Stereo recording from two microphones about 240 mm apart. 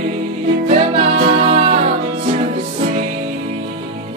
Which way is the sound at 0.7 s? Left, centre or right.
Right.